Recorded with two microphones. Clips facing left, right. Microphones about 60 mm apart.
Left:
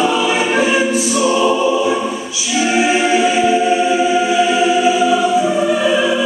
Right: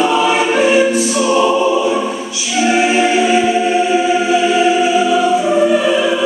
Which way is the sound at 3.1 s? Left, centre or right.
Right.